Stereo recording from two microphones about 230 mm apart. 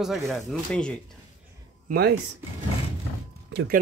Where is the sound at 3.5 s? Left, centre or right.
Right.